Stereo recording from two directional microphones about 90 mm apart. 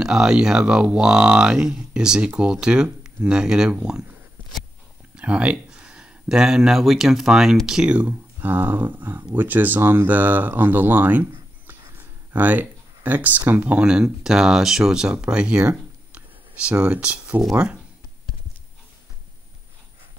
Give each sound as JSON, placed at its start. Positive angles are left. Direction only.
{"t": 0.0, "sound": "speech", "side_deg": -5}
{"t": 5.1, "sound": "speech", "side_deg": -15}
{"t": 12.3, "sound": "speech", "side_deg": -20}